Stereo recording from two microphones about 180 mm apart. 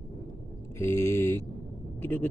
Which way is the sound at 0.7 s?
15° left (ahead or behind).